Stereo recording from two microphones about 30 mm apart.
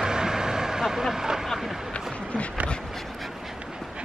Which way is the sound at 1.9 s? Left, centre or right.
Left.